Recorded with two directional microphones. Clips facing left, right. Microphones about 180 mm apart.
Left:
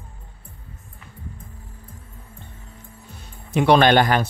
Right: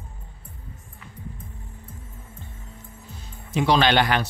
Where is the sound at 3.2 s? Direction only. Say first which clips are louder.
Left 3 dB; 60° left (ahead or behind); by 4.2 s 45° left (ahead or behind).